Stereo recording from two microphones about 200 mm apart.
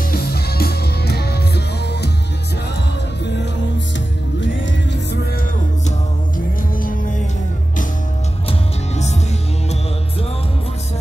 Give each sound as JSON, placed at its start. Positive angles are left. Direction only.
{"t": 0.1, "sound": "music", "side_deg": 50}
{"t": 5.9, "sound": "music", "side_deg": 45}
{"t": 8.5, "sound": "music", "side_deg": 35}